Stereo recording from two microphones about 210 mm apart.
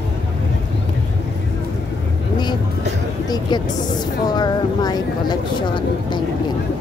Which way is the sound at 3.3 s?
20° left (ahead or behind).